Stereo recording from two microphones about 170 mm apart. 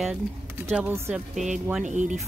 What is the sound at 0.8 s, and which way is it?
Speech, 10° right (ahead or behind).